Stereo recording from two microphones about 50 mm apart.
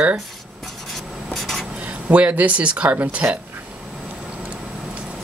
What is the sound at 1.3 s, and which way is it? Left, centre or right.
Writing, centre.